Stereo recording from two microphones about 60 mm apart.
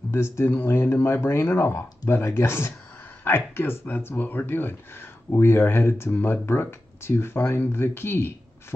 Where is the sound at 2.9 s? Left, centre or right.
Left.